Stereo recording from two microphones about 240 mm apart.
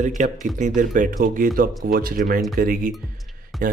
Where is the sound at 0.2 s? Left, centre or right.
Right.